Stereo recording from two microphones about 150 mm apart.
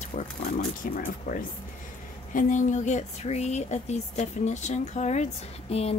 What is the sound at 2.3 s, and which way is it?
Speech, 60° left (ahead or behind).